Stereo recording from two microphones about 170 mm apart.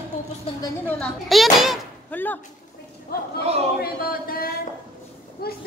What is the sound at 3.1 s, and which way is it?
Speech, 65° left (ahead or behind).